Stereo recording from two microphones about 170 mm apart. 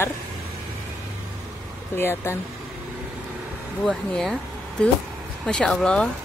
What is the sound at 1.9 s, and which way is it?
Speech, 15° left (ahead or behind).